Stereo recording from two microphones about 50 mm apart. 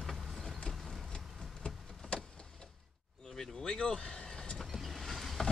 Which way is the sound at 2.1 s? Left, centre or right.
Left.